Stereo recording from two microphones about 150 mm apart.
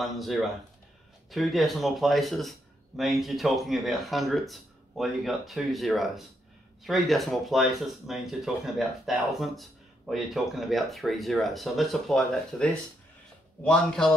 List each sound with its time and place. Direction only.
0.0 s speech: centre (ahead or behind)
13.7 s speech: 5° left (ahead or behind)